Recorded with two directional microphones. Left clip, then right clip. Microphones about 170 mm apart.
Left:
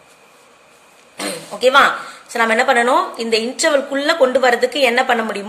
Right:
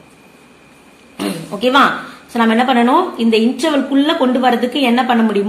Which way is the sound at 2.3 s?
35° left (ahead or behind).